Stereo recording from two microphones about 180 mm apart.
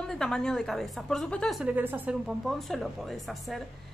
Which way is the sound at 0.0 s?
5° left (ahead or behind).